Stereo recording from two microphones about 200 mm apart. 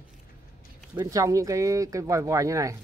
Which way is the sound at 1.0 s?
15° right (ahead or behind).